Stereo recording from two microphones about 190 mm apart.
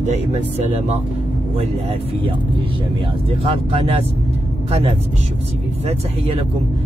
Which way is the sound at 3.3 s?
30° right (ahead or behind).